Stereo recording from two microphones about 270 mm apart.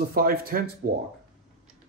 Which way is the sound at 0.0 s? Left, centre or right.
Right.